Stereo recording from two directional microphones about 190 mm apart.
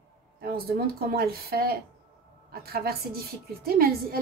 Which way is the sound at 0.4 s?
55° right (ahead or behind).